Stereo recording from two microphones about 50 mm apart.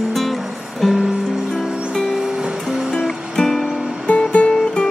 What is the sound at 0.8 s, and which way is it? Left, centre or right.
Music, centre.